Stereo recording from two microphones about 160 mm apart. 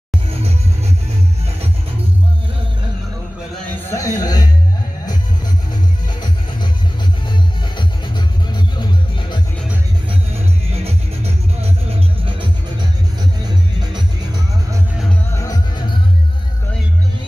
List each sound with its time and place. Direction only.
3.8 s a sound: 20° left (ahead or behind)
5.7 s music: 25° left (ahead or behind)
10.0 s music: 40° right (ahead or behind)
15.3 s music: 20° left (ahead or behind)